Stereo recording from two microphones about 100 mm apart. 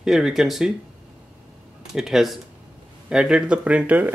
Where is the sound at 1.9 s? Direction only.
5° right (ahead or behind).